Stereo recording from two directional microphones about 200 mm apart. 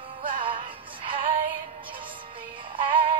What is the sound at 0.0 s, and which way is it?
Music, 25° right (ahead or behind).